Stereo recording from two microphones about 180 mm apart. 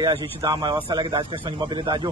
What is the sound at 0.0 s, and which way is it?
A man's voice, 20° right (ahead or behind).